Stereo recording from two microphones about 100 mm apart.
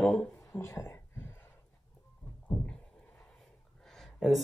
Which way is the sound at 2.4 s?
15° left (ahead or behind).